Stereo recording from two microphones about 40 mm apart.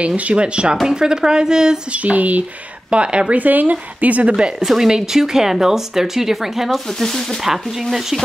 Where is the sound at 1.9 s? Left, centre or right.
Right.